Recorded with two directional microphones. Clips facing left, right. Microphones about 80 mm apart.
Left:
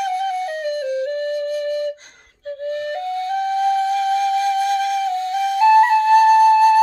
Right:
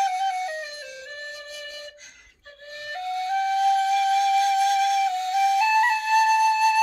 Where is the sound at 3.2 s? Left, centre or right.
Left.